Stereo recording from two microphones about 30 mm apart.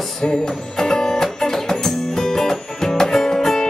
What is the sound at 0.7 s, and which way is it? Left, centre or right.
Music, centre.